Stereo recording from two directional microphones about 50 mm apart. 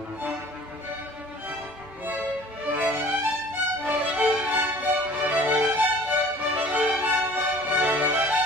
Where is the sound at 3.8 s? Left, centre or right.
Right.